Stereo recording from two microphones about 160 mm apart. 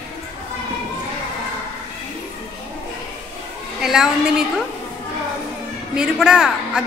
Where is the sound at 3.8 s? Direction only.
5° right (ahead or behind).